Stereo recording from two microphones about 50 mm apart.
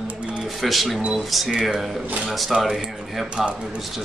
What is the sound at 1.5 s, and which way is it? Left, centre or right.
Speech, centre.